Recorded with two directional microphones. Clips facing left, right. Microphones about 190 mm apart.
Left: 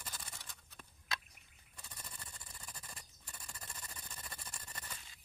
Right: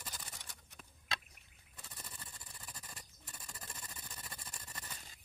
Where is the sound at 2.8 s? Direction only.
5° right (ahead or behind).